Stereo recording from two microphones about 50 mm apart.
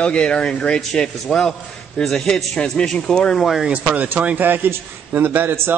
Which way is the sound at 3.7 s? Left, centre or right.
Right.